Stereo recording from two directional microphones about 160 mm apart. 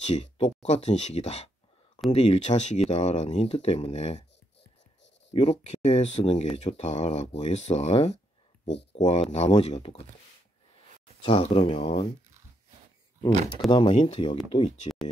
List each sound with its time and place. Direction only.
0.0 s speech: 45° left (ahead or behind)
5.3 s speech: 40° left (ahead or behind)
11.2 s speech: 35° left (ahead or behind)
13.7 s speech: 30° left (ahead or behind)
14.8 s a sound: 45° left (ahead or behind)